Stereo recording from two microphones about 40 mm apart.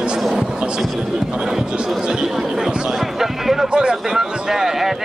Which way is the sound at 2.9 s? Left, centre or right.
Centre.